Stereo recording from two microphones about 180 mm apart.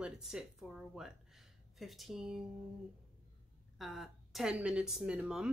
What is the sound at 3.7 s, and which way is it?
Speech, centre (ahead or behind).